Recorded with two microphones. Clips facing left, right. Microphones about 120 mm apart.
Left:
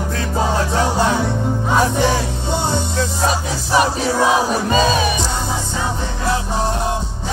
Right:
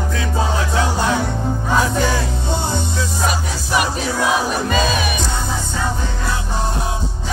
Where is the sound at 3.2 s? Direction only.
25° left (ahead or behind).